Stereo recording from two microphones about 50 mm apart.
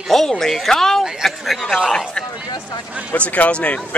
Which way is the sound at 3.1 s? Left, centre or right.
Left.